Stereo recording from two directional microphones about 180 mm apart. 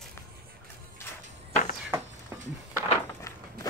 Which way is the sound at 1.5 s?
45° left (ahead or behind).